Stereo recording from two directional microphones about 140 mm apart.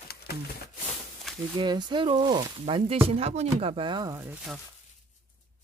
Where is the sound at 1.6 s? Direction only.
30° right (ahead or behind).